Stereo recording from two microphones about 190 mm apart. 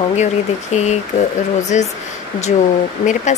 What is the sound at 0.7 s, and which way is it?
Speech, 35° left (ahead or behind).